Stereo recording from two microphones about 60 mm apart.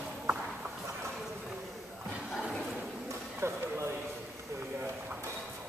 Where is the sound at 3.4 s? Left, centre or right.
Right.